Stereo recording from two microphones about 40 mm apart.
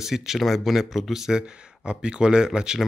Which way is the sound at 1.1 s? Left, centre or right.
Centre.